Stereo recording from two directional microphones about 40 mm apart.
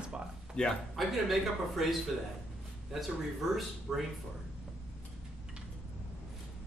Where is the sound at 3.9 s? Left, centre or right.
Centre.